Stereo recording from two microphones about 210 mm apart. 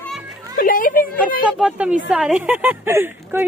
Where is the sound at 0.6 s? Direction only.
40° left (ahead or behind).